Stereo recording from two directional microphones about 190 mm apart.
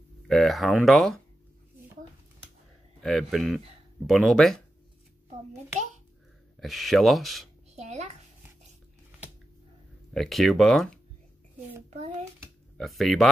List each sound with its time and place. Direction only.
0.3 s speech: centre (ahead or behind)
3.0 s speech: centre (ahead or behind)
6.6 s speech: centre (ahead or behind)
7.7 s a sound: 35° right (ahead or behind)
10.1 s speech: centre (ahead or behind)
11.9 s a sound: 35° right (ahead or behind)
12.7 s speech: centre (ahead or behind)